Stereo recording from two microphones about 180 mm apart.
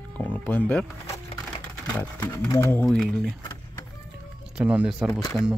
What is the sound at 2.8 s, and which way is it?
Speech, centre (ahead or behind).